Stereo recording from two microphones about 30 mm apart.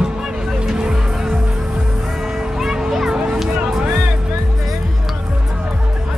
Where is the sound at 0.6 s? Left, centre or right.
Right.